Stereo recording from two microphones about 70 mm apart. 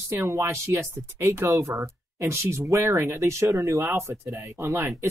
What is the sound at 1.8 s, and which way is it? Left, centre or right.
Speech, right.